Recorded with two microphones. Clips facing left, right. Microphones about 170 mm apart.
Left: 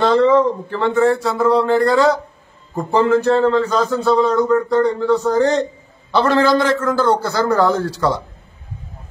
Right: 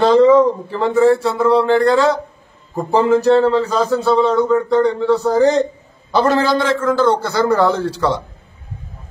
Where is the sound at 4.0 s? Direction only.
Centre (ahead or behind).